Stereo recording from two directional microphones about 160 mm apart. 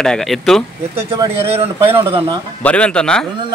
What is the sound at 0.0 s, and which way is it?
Speech, centre (ahead or behind).